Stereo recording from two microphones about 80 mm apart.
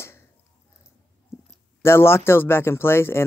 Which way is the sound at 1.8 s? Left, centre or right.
Left.